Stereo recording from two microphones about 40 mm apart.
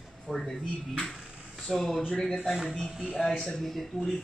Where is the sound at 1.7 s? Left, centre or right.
Centre.